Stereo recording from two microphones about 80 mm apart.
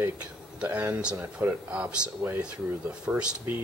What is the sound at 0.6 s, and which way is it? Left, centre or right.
Speech, right.